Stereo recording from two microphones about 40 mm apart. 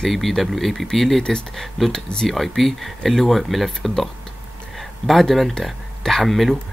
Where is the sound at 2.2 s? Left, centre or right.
Centre.